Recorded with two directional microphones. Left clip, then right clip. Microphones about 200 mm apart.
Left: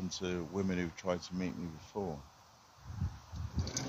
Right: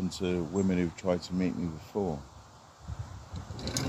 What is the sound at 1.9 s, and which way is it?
Speech, 15° left (ahead or behind).